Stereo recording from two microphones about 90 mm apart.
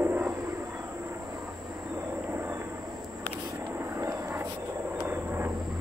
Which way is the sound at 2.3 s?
25° right (ahead or behind).